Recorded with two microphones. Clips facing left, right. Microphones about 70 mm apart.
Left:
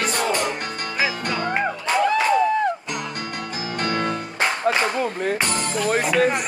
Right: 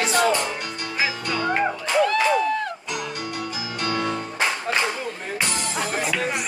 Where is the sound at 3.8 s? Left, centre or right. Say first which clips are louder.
Left 1 dB; left.